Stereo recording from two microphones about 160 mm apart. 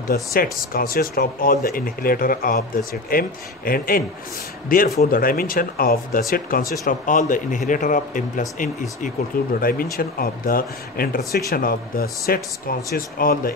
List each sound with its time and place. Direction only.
0.1 s speech: 65° left (ahead or behind)
9.6 s speech: 65° left (ahead or behind)